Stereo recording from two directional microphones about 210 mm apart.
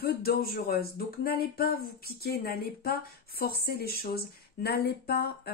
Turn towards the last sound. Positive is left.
turn(degrees=50)  # may be behind; listen again after turning